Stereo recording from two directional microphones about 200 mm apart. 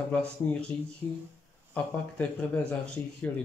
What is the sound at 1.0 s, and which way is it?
Speech, 10° left (ahead or behind).